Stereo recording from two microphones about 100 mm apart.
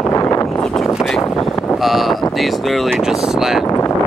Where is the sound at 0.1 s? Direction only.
35° left (ahead or behind).